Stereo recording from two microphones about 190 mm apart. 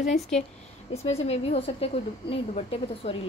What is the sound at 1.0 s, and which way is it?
A woman's voice, 35° left (ahead or behind).